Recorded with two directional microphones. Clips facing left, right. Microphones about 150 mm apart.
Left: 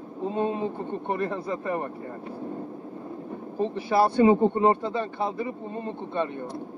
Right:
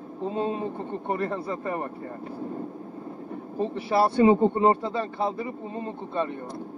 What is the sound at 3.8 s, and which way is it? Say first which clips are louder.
A man's voice: even; 30° right (ahead or behind).